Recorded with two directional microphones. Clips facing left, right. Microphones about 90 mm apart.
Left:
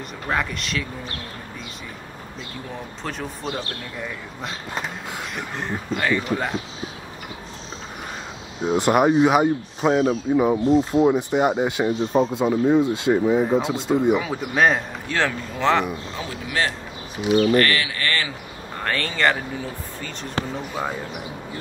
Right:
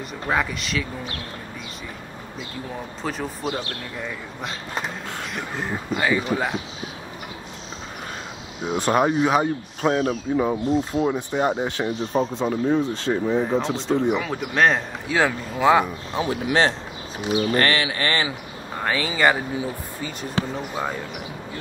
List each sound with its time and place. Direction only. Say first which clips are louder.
0.3 s speech: right 1 dB; centre (ahead or behind)
3.0 s speech: right 3 dB; centre (ahead or behind)
8.8 s speech: left 3 dB; 10° left (ahead or behind)
15.1 s speech: right 2 dB; 10° right (ahead or behind)
16.2 s speech: right 7 dB; 25° right (ahead or behind)
18.8 s speech: right 1 dB; 5° right (ahead or behind)
20.5 s speech: even; centre (ahead or behind)